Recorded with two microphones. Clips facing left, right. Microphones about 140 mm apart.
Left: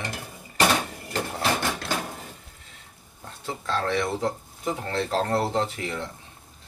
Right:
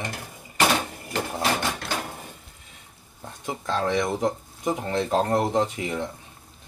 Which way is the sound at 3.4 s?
15° right (ahead or behind).